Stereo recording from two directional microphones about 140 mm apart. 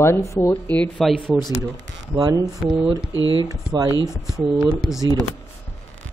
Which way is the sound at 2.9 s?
25° left (ahead or behind).